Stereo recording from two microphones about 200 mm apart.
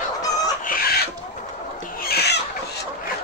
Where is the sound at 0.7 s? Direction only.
45° left (ahead or behind).